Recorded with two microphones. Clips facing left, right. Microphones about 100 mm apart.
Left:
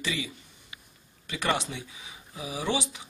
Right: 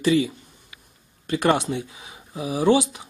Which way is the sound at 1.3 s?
50° right (ahead or behind).